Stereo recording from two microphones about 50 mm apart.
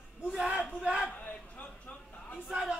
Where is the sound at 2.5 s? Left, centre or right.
Centre.